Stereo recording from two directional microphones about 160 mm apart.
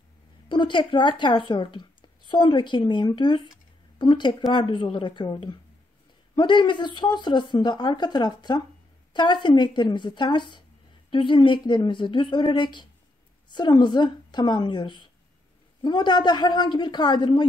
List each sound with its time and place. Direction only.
0.5 s speech: 30° left (ahead or behind)